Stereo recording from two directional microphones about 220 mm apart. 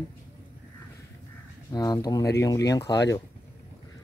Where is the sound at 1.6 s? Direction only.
15° left (ahead or behind).